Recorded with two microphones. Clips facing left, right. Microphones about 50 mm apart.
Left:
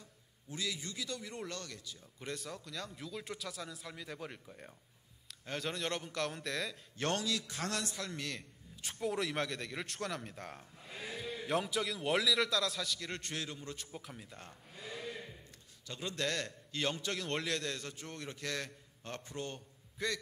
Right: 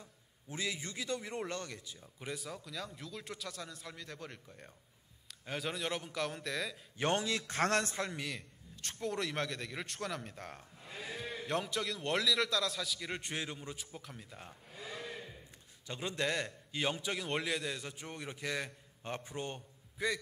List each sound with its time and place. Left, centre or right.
0.0 s a man's voice: right
2.1 s a man's voice: centre
5.3 s a man's voice: centre
7.0 s a man's voice: right
7.4 s a man's voice: right
8.1 s a man's voice: centre
8.8 s a man's voice: centre
13.7 s a man's voice: centre
15.9 s a man's voice: right